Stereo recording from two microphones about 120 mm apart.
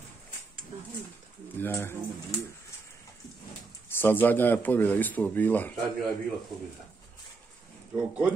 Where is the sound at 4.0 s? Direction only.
15° left (ahead or behind).